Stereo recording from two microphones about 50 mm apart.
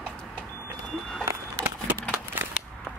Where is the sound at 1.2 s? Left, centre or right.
Right.